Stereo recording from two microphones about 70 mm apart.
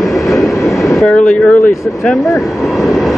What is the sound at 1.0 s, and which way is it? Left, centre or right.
Speech, centre.